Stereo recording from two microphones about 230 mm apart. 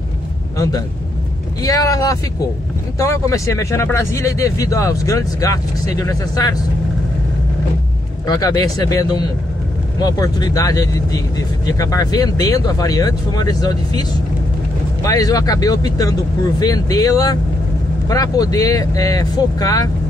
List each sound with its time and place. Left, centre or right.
0.6 s speech: centre
8.3 s speech: centre
15.0 s speech: centre